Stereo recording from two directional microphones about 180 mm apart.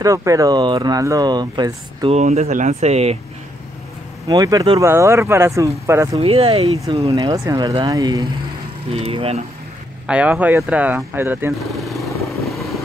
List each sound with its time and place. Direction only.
0.0 s speech: 20° right (ahead or behind)
2.1 s speech: 40° right (ahead or behind)
4.3 s speech: 20° right (ahead or behind)
6.1 s speech: 35° right (ahead or behind)
6.9 s speech: 25° right (ahead or behind)
8.9 s speech: 35° right (ahead or behind)
10.0 s speech: 5° right (ahead or behind)
11.7 s vehicle: centre (ahead or behind)